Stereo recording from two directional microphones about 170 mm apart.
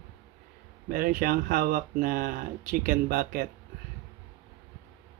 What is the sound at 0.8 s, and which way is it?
Speech, 55° right (ahead or behind).